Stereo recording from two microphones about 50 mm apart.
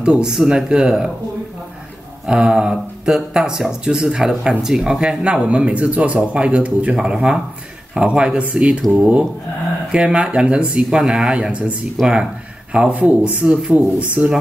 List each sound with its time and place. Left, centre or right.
0.0 s speech: centre
2.2 s speech: centre
9.9 s speech: centre
11.5 s speech: right
13.6 s speech: centre
13.9 s speech: right